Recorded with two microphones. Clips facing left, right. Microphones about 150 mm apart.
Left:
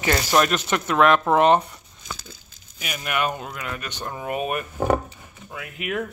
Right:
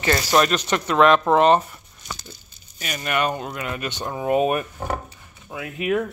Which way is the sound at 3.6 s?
20° right (ahead or behind).